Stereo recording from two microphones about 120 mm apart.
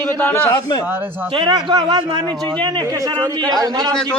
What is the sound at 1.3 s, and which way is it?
Speech, 40° right (ahead or behind).